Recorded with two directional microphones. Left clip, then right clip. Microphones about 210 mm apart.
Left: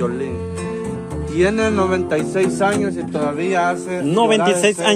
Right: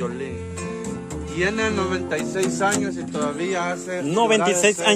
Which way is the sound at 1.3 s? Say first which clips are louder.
Left 6 dB; 50° left (ahead or behind).